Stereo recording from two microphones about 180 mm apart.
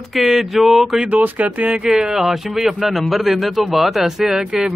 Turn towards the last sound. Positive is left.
turn(degrees=-5)  # may be behind; listen again after turning